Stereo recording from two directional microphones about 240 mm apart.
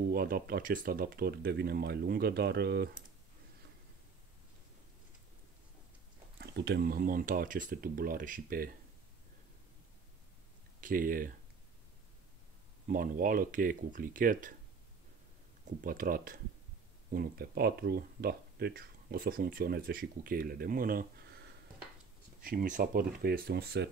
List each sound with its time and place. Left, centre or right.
0.1 s speech: right
6.4 s speech: right
10.8 s speech: right
12.8 s speech: right
15.8 s speech: right